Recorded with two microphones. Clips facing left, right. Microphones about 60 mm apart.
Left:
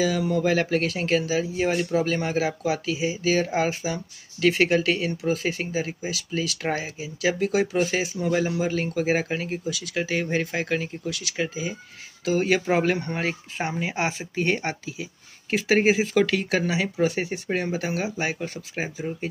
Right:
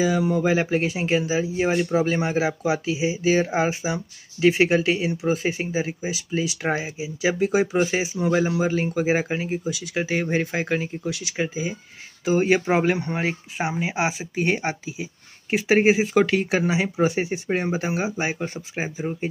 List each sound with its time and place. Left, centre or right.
0.0 s speech: right